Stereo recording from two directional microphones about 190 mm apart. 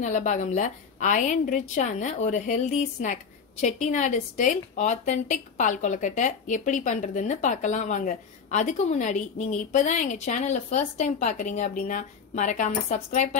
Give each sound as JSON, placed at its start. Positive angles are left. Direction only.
{"t": 0.0, "sound": "a woman's voice", "side_deg": 40}